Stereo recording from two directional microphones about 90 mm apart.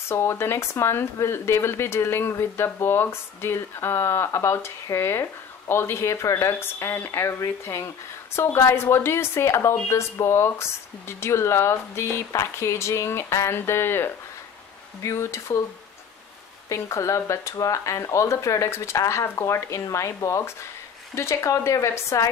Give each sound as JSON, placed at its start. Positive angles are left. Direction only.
{"t": 0.1, "sound": "speech", "side_deg": 30}
{"t": 16.6, "sound": "speech", "side_deg": 35}